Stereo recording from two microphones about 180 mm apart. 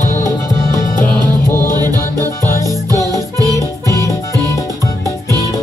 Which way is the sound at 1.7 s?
20° right (ahead or behind).